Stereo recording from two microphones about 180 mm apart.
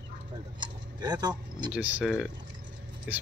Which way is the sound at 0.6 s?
20° right (ahead or behind).